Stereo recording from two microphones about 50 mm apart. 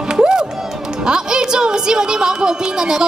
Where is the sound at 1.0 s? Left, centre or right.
Centre.